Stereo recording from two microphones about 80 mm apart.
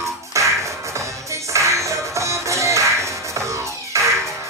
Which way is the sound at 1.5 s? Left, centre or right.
Right.